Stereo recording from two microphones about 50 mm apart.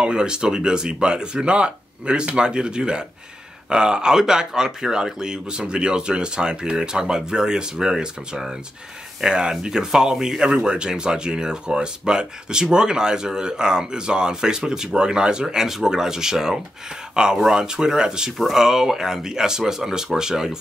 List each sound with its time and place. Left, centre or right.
0.0 s speech: centre